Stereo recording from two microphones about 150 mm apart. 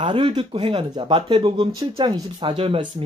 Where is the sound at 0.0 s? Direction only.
35° right (ahead or behind).